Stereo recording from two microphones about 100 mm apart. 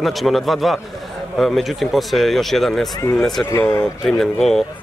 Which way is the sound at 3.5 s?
35° left (ahead or behind).